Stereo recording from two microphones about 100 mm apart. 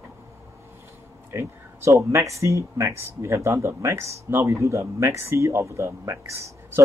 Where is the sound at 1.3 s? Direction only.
25° right (ahead or behind).